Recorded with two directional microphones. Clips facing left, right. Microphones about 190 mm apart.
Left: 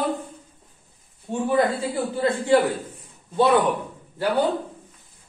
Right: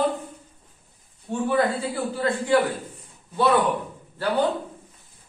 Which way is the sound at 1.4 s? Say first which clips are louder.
Left 2 dB; 20° left (ahead or behind).